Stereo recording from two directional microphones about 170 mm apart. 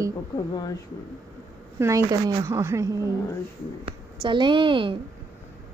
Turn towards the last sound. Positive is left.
turn(degrees=-30)  # may be behind; listen again after turning